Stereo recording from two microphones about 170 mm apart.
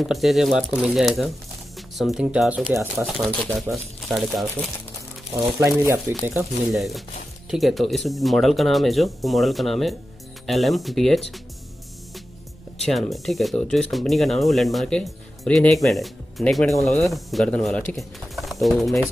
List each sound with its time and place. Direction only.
0.1 s speech: centre (ahead or behind)
2.7 s speech: 15° right (ahead or behind)
3.3 s speech: 5° left (ahead or behind)
5.3 s speech: 20° right (ahead or behind)
6.7 s speech: centre (ahead or behind)
12.8 s speech: centre (ahead or behind)